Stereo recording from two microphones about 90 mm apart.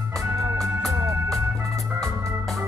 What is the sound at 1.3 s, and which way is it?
Organ, 5° left (ahead or behind).